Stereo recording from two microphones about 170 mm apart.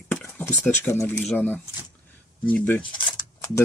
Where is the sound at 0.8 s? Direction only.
10° left (ahead or behind).